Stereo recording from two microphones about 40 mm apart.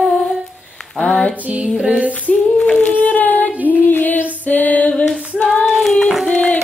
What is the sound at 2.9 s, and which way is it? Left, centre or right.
Child singing, left.